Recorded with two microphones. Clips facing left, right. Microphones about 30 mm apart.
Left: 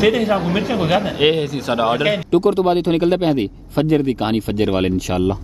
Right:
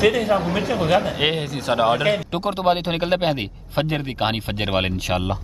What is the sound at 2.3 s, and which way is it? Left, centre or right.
Speech, right.